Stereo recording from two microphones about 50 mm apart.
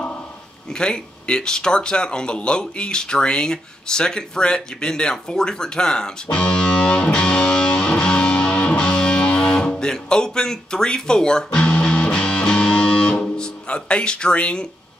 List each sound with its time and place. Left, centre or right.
0.7 s speech: centre
6.3 s music: centre